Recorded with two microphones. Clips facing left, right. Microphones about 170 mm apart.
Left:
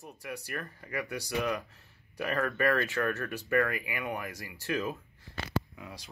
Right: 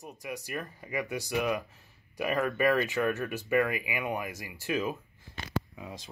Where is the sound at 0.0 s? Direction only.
15° right (ahead or behind).